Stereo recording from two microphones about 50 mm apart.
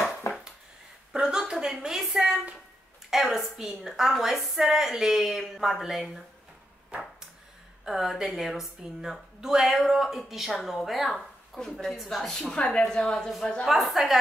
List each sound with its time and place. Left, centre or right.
0.3 s a sound: left
1.1 s a sound: centre
3.1 s a woman's voice: centre
7.8 s a woman's voice: centre
12.5 s speech: left
12.8 s a woman's voice: centre
13.7 s a woman's voice: centre